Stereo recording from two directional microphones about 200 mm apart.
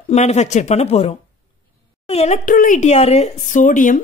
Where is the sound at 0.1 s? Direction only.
35° left (ahead or behind).